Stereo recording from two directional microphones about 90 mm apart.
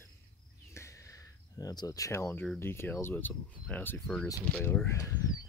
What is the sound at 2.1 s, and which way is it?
Speech, 25° left (ahead or behind).